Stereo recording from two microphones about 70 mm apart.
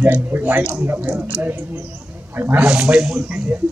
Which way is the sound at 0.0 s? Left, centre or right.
Right.